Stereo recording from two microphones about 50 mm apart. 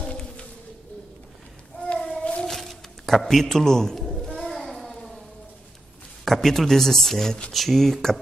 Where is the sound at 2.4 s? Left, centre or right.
Centre.